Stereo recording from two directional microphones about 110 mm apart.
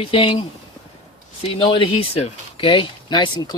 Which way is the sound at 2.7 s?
45° left (ahead or behind).